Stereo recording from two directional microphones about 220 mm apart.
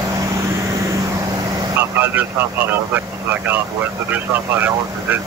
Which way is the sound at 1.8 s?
10° right (ahead or behind).